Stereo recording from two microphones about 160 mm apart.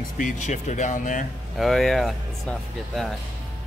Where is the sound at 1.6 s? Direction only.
Centre (ahead or behind).